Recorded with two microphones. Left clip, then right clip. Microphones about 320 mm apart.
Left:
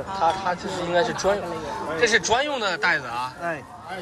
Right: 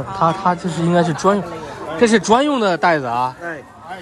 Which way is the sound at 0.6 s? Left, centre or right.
Centre.